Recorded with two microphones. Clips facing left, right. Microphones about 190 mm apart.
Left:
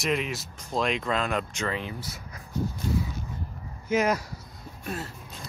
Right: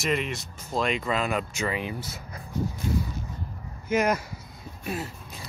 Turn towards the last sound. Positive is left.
turn(degrees=-10)  # may be behind; listen again after turning